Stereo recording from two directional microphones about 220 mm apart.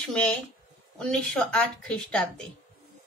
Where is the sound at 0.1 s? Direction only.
5° left (ahead or behind).